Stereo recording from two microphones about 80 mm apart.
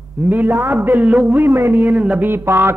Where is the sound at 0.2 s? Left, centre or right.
Right.